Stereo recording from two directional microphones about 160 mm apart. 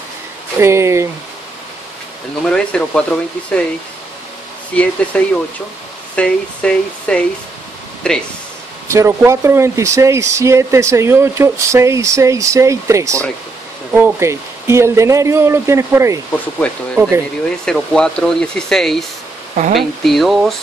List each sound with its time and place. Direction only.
0.6 s speech: 15° right (ahead or behind)
2.4 s speech: 5° left (ahead or behind)
5.1 s speech: 5° left (ahead or behind)
8.8 s speech: 20° right (ahead or behind)
16.5 s speech: 5° left (ahead or behind)
19.5 s speech: 50° right (ahead or behind)
20.0 s speech: centre (ahead or behind)